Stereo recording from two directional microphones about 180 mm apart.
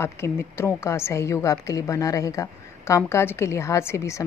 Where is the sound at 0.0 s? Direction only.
15° left (ahead or behind).